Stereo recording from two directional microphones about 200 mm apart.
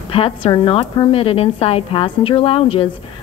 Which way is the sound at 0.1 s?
25° left (ahead or behind).